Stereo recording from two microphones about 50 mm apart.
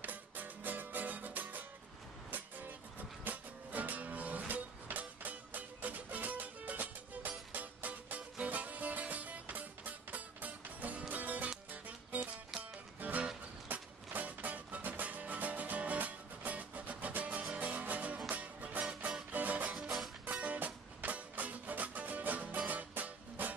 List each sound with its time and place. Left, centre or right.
0.0 s music: right